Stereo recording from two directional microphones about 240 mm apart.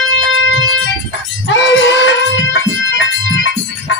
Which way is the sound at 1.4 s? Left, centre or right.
Left.